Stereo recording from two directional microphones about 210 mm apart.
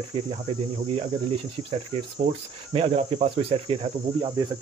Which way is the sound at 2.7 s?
30° right (ahead or behind).